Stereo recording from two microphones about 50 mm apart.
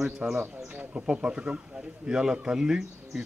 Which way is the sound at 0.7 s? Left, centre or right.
Right.